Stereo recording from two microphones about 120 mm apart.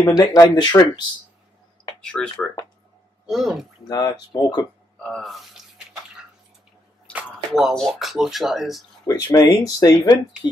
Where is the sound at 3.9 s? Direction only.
35° left (ahead or behind).